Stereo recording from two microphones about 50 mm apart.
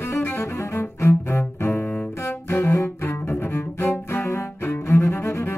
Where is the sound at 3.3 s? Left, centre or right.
Left.